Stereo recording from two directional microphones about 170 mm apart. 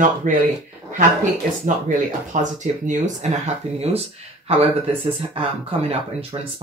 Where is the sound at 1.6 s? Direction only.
45° right (ahead or behind).